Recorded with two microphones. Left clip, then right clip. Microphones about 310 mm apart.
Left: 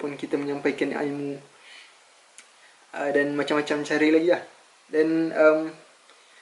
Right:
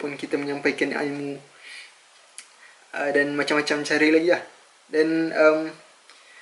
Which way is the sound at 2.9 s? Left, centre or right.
Centre.